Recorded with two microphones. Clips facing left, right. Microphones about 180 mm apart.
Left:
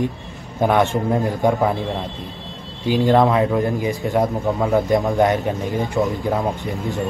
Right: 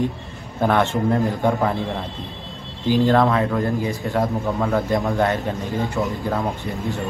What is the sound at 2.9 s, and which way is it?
Speech, 20° left (ahead or behind).